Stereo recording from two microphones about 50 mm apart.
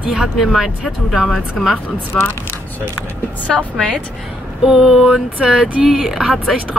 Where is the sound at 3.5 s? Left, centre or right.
Centre.